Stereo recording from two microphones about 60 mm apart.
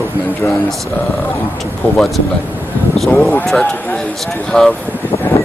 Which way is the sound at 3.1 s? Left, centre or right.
Left.